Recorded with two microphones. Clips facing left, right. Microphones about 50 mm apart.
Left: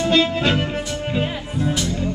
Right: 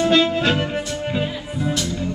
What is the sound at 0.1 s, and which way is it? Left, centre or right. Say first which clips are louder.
Music: right 1 dB; centre.